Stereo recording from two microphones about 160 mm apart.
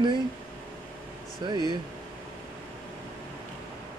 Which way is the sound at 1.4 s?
30° right (ahead or behind).